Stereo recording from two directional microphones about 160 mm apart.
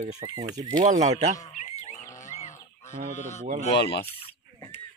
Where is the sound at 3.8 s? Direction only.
90° left.